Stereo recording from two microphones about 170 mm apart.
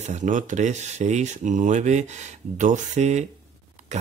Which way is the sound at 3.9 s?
45° right (ahead or behind).